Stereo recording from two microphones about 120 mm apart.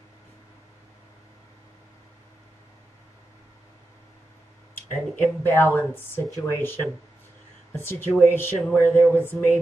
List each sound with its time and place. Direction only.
4.9 s speech: 20° left (ahead or behind)
8.2 s speech: 15° left (ahead or behind)